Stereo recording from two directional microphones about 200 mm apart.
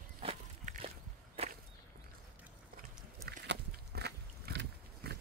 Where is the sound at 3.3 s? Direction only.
55° right (ahead or behind).